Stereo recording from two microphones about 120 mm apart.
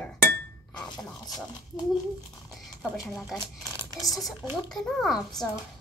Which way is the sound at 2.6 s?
Centre (ahead or behind).